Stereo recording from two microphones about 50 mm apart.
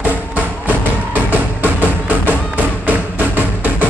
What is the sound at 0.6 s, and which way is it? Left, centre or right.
Music, right.